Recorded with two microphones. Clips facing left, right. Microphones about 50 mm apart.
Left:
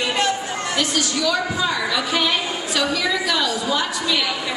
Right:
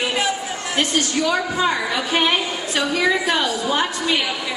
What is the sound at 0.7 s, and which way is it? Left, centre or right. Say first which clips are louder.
A woman's voice: right 3 dB; right.